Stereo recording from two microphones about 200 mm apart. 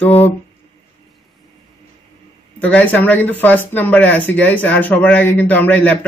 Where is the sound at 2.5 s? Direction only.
10° left (ahead or behind).